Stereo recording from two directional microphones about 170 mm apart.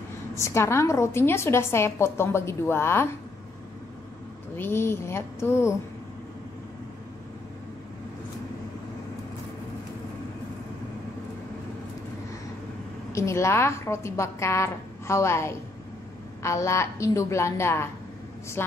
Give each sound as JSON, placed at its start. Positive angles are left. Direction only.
{"t": 0.4, "sound": "a woman's voice", "side_deg": 15}
{"t": 4.6, "sound": "a woman's voice", "side_deg": 15}
{"t": 13.1, "sound": "a woman's voice", "side_deg": 15}